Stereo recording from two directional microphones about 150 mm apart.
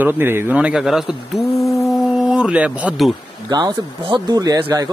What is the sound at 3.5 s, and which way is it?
Speech, 30° right (ahead or behind).